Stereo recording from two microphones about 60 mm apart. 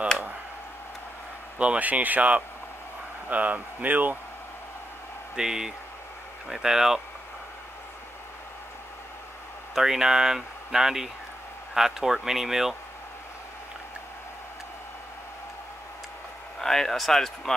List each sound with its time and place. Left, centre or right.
1.6 s speech: right
5.3 s speech: centre
9.8 s speech: centre
16.6 s speech: centre